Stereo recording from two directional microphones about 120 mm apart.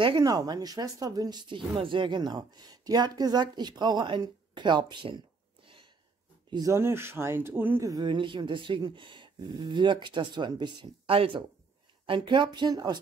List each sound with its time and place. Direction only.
0.0 s a woman's voice: 35° right (ahead or behind)
6.5 s speech: 25° right (ahead or behind)
7.8 s a woman's voice: 35° right (ahead or behind)